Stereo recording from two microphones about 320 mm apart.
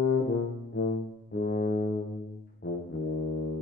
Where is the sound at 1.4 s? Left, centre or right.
Left.